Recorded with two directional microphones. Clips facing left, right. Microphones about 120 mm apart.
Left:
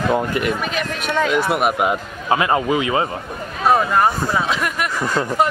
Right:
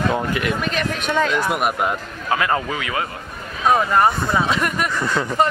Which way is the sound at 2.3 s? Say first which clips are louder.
Left 4 dB; 20° left (ahead or behind).